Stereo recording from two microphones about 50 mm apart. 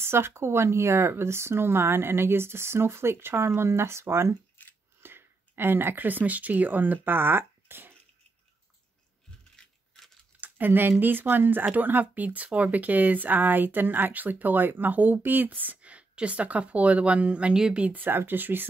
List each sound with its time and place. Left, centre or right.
0.0 s speech: right
5.0 s speech: right
10.4 s speech: right
17.9 s speech: right